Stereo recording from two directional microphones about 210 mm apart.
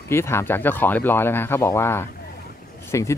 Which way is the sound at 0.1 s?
10° left (ahead or behind).